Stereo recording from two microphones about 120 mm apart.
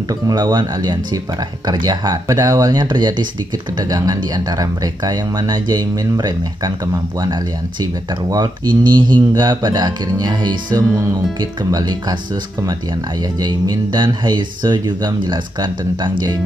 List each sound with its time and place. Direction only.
0.3 s speech: 35° right (ahead or behind)
13.4 s speech: 35° right (ahead or behind)